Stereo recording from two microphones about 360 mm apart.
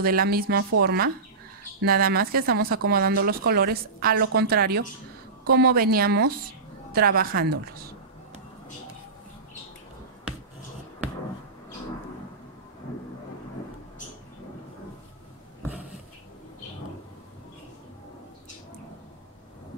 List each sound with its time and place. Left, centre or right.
0.0 s a woman's voice: right